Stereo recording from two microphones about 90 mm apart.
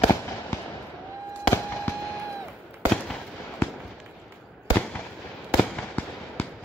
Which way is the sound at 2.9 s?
5° left (ahead or behind).